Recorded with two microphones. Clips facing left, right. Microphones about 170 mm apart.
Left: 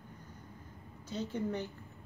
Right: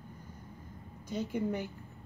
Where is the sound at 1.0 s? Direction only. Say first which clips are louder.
Right 3 dB; 10° right (ahead or behind).